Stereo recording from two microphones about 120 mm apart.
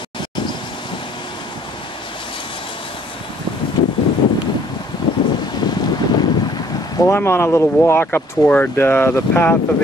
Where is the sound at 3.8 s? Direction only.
40° left (ahead or behind).